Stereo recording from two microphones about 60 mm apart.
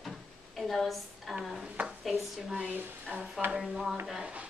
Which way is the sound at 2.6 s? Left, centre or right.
Right.